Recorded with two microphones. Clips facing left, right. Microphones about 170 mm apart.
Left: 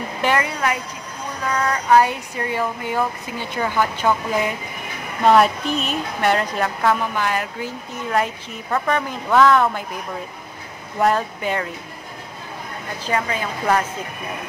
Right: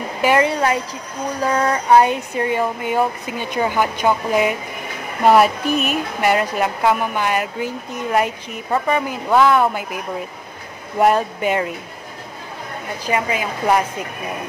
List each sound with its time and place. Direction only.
0.4 s a woman's voice: 30° right (ahead or behind); by 9.8 s 10° right (ahead or behind)
11.0 s speech: 20° right (ahead or behind)
13.0 s speech: 10° right (ahead or behind)